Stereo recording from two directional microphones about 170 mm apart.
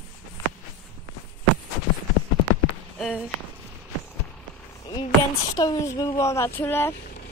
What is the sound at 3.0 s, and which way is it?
Speech, 5° right (ahead or behind).